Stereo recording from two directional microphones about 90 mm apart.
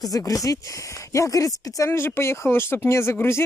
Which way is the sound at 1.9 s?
25° left (ahead or behind).